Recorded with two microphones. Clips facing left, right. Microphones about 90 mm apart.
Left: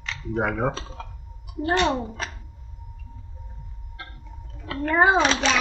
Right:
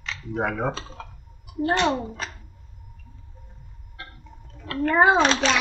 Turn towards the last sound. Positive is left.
turn(degrees=0)  # may be behind; listen again after turning